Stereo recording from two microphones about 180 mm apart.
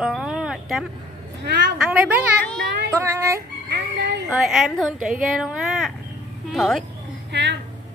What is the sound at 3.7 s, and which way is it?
Speech, 75° right (ahead or behind).